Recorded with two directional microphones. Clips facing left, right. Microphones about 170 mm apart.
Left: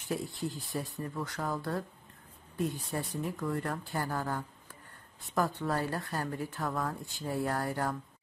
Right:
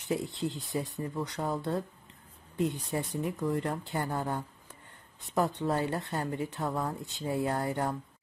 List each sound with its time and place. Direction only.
0.1 s speech: 20° right (ahead or behind)